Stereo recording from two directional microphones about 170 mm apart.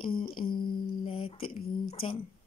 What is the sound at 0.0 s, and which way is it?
Speech, 30° left (ahead or behind).